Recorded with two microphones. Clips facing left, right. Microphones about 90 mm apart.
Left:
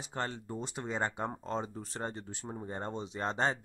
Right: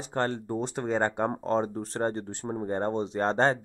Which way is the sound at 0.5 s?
35° right (ahead or behind).